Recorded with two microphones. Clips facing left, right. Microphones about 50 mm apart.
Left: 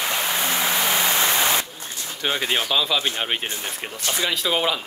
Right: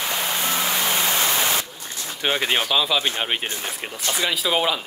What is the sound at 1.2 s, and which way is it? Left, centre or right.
Static, left.